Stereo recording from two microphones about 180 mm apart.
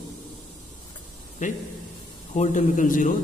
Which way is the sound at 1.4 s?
45° left (ahead or behind).